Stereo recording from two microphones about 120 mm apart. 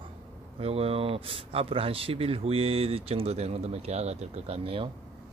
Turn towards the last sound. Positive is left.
turn(degrees=-50)  # may be behind; listen again after turning